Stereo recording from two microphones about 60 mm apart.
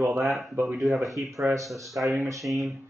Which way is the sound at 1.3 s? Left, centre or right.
Right.